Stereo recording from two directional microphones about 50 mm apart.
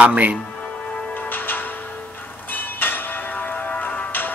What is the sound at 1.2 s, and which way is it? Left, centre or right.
Music, left.